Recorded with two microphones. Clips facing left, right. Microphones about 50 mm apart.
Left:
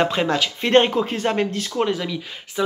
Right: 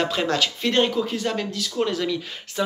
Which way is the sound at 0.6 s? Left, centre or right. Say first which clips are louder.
Left 7 dB; left.